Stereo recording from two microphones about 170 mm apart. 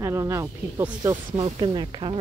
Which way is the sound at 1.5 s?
30° right (ahead or behind).